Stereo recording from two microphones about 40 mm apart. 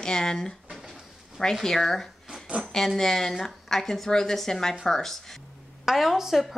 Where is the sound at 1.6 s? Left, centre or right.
Centre.